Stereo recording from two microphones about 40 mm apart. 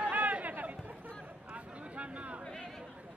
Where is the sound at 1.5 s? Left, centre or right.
Right.